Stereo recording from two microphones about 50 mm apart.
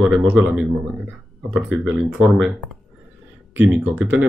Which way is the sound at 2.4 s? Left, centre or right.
Centre.